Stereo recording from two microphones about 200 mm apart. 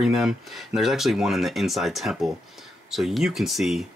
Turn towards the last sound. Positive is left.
turn(degrees=0)  # may be behind; listen again after turning